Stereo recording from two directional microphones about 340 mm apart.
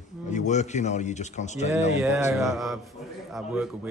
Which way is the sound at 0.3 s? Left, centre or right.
Left.